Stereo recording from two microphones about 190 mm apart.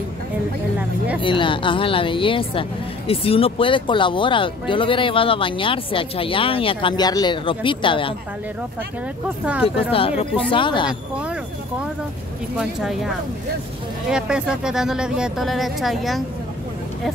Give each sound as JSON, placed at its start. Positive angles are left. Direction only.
{"t": 0.7, "sound": "vehicle", "side_deg": -5}
{"t": 1.2, "sound": "speech", "side_deg": 25}
{"t": 9.8, "sound": "speech", "side_deg": 30}
{"t": 10.9, "sound": "speech", "side_deg": -5}
{"t": 12.5, "sound": "speech", "side_deg": 0}
{"t": 14.1, "sound": "speech", "side_deg": -5}